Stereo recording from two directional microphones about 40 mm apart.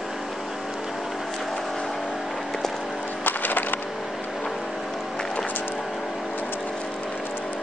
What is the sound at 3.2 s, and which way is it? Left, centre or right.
Wood, left.